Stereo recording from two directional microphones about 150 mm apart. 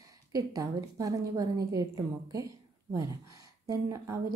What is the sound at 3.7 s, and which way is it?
Speech, 20° right (ahead or behind).